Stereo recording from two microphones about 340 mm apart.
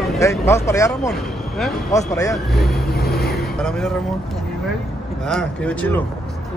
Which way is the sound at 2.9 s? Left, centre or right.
Left.